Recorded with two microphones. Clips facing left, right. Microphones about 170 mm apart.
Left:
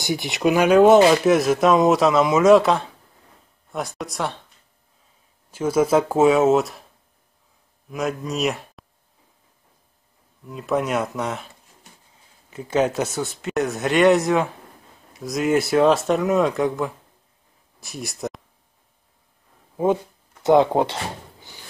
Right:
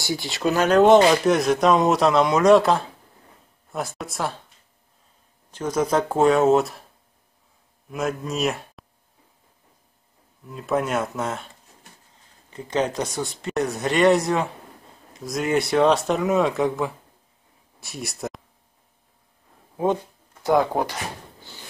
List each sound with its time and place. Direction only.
0.0 s speech: 20° left (ahead or behind); by 4.4 s centre (ahead or behind)
5.5 s speech: 5° left (ahead or behind)
7.9 s speech: centre (ahead or behind)
10.4 s speech: centre (ahead or behind)
20.4 s speech: 25° left (ahead or behind)